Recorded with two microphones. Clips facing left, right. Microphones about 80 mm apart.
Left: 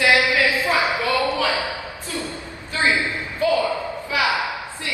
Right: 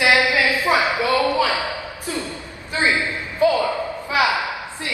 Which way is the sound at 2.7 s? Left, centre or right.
Right.